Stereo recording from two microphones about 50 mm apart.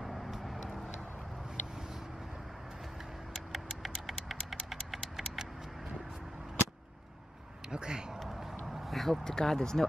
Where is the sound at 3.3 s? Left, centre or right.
Centre.